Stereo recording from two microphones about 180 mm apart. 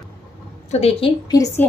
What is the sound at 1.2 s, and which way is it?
Speech, 20° left (ahead or behind).